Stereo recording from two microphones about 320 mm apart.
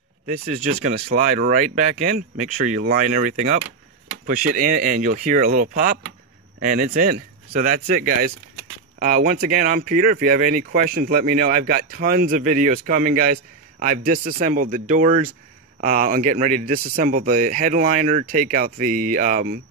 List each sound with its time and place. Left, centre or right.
0.3 s speech: right